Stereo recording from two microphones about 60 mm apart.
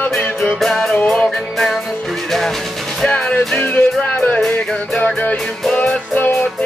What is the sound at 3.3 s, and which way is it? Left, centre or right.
Music, left.